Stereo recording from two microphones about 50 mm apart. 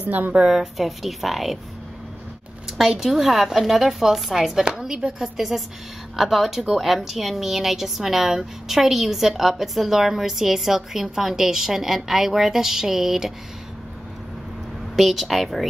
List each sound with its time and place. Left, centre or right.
0.0 s a woman's voice: right
0.5 s a woman's voice: centre
2.8 s a woman's voice: centre
15.0 s a woman's voice: centre